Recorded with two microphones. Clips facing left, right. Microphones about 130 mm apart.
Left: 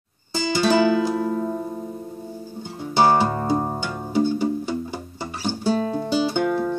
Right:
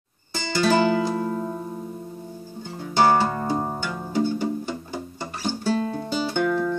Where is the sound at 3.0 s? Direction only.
15° left (ahead or behind).